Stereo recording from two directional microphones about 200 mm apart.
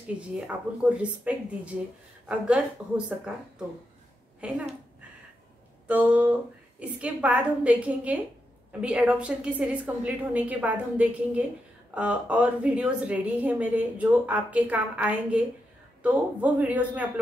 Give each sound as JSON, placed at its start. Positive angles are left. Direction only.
{"t": 0.2, "sound": "a woman's voice", "side_deg": -5}
{"t": 4.4, "sound": "a woman's voice", "side_deg": -5}
{"t": 5.9, "sound": "a woman's voice", "side_deg": -5}